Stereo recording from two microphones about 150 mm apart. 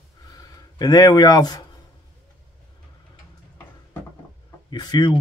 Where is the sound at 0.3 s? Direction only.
25° left (ahead or behind).